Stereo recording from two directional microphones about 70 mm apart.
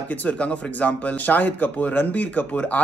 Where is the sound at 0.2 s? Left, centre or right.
Centre.